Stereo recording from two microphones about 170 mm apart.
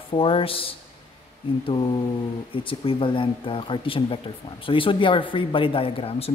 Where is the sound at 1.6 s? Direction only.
30° left (ahead or behind).